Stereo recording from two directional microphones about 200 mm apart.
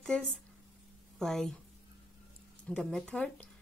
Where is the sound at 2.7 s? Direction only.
Centre (ahead or behind).